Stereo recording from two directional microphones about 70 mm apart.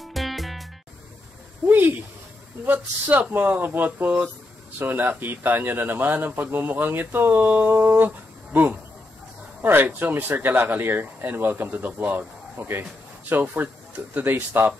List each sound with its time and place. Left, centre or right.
0.1 s music: centre
1.7 s speech: right
9.6 s speech: right